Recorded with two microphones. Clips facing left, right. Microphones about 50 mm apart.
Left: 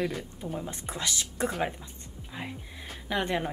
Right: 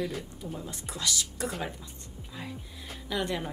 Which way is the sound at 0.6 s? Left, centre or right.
Left.